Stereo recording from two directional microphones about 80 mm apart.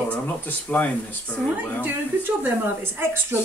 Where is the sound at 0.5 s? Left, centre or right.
Centre.